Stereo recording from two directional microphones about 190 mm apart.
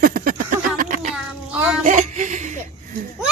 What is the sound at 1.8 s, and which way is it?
Speech, 40° right (ahead or behind).